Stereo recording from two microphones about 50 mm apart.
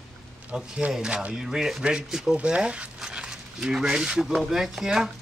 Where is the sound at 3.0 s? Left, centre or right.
Centre.